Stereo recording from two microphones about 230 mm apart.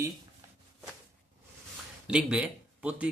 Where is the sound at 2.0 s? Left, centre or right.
Centre.